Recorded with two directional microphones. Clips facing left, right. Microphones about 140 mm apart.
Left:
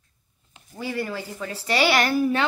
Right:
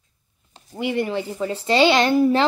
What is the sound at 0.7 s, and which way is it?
Speech, 20° right (ahead or behind).